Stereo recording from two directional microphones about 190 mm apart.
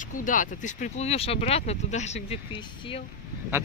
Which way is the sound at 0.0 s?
45° left (ahead or behind).